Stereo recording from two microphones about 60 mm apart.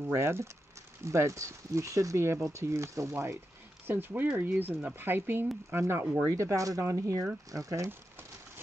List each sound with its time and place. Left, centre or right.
0.1 s speech: right
3.8 s speech: right
6.2 s speech: right